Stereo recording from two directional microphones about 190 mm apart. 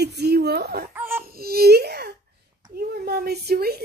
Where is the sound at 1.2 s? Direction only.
55° right (ahead or behind).